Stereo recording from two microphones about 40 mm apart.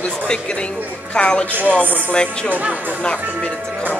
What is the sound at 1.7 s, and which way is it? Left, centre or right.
Speech, left.